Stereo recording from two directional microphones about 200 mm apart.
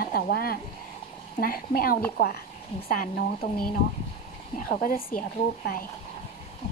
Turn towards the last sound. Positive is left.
turn(degrees=45)  # may be behind; listen again after turning